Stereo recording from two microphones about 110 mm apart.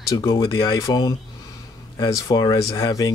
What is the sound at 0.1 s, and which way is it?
Speech, 35° left (ahead or behind).